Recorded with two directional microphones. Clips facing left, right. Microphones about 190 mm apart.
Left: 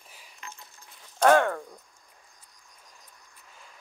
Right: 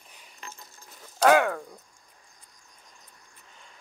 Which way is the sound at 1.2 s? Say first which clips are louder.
Even; 5° right (ahead or behind).